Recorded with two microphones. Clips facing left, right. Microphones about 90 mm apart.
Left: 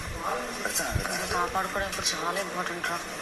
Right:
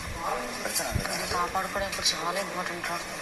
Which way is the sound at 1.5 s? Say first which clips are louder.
Even; 55° left (ahead or behind).